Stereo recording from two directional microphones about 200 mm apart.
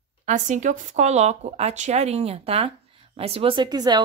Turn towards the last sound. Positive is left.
turn(degrees=-20)  # may be behind; listen again after turning